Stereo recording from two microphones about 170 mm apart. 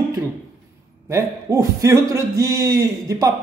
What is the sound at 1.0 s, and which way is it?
A man's voice, 15° right (ahead or behind).